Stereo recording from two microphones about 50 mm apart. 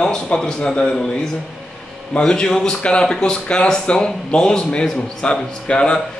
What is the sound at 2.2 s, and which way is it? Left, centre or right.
Speech, centre.